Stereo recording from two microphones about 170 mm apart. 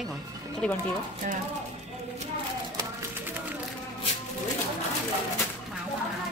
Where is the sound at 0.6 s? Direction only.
5° left (ahead or behind).